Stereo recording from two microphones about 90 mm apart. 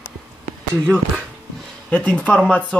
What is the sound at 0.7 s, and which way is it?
Speech, 20° right (ahead or behind).